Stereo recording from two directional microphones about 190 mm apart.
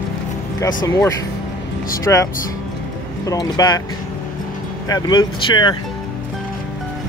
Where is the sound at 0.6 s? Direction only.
20° left (ahead or behind).